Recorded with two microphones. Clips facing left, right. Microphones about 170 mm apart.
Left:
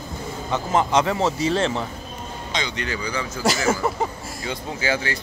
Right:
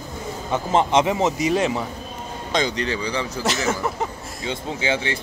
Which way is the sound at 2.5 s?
45° right (ahead or behind).